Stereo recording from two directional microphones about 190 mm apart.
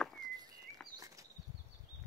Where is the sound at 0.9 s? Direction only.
15° right (ahead or behind).